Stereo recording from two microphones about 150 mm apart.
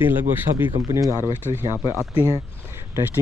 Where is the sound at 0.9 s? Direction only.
20° right (ahead or behind).